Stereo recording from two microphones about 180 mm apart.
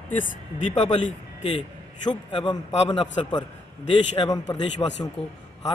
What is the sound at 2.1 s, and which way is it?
A man's voice, 25° left (ahead or behind).